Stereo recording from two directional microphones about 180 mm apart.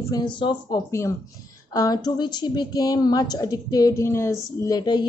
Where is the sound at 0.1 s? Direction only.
25° left (ahead or behind).